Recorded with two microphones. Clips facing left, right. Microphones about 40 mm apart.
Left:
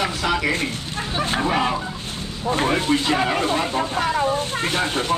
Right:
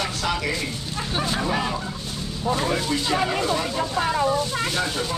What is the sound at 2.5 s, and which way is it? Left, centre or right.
Speech, left.